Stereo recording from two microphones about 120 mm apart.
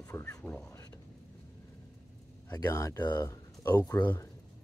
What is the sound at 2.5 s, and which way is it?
Speech, 30° left (ahead or behind).